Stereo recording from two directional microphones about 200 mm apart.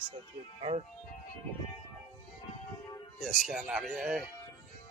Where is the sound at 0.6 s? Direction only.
30° right (ahead or behind).